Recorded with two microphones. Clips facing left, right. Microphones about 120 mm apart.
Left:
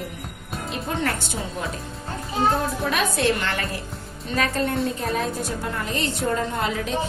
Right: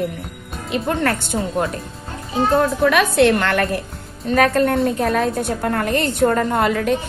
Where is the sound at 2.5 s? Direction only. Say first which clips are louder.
Right 8 dB; 70° right (ahead or behind).